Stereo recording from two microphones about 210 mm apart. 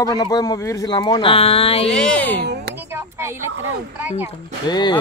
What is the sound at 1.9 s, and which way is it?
Speech, 5° left (ahead or behind).